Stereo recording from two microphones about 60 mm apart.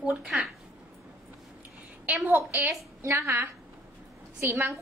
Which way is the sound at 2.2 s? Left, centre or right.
Right.